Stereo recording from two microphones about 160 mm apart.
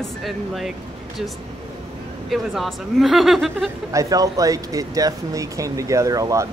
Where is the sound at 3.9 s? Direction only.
20° right (ahead or behind).